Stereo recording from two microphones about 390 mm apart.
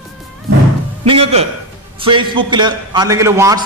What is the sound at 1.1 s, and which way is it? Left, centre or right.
A man's voice, centre.